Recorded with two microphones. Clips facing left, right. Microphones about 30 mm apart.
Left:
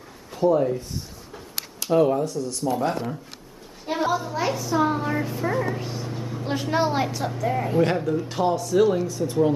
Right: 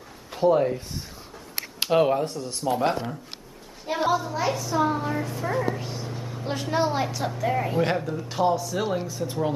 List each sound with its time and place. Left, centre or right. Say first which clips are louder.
0.3 s speech: even; right
2.7 s speech: right 2 dB; right
4.1 s a child's voice: even; centre